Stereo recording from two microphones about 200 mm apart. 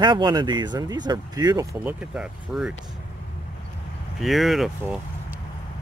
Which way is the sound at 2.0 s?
5° right (ahead or behind).